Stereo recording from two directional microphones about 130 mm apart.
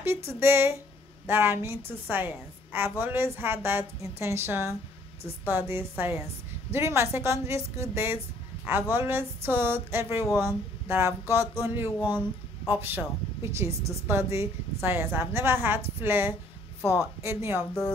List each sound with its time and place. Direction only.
0.0 s a woman's voice: 20° right (ahead or behind)